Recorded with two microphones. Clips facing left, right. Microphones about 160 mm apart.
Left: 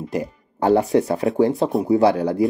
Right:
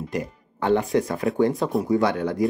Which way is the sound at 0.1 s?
35° left (ahead or behind).